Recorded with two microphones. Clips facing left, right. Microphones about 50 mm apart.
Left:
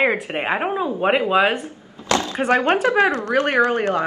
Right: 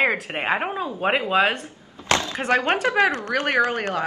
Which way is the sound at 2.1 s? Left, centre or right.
Right.